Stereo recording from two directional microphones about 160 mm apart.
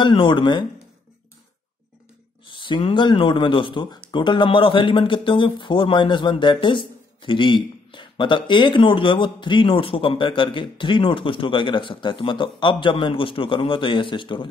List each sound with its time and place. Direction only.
0.0 s speech: 30° left (ahead or behind)
2.4 s speech: 30° left (ahead or behind)